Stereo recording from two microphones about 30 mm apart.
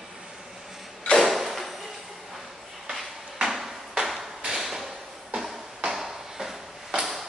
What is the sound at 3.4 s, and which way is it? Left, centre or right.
Ping, centre.